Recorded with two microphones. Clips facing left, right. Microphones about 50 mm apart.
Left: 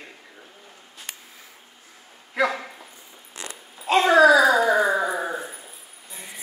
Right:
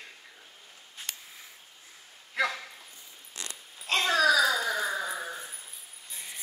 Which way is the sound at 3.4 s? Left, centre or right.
Centre.